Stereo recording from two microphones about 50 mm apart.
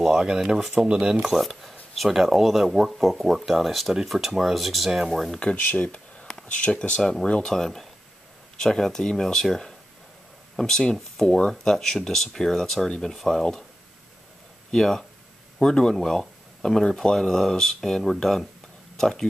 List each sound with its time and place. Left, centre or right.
0.0 s speech: centre
1.3 s speech: centre
5.6 s speech: left
7.0 s speech: centre
14.7 s speech: centre